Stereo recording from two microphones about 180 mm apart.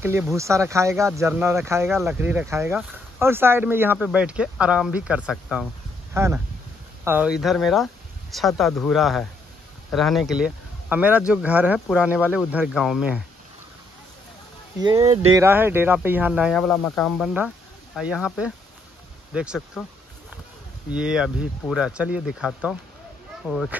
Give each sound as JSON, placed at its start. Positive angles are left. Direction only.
{"t": 0.0, "sound": "speech", "side_deg": -10}
{"t": 1.9, "sound": "speech", "side_deg": 0}
{"t": 6.1, "sound": "speech", "side_deg": -15}
{"t": 14.8, "sound": "speech", "side_deg": -30}
{"t": 15.3, "sound": "speech", "side_deg": -10}
{"t": 20.9, "sound": "speech", "side_deg": -5}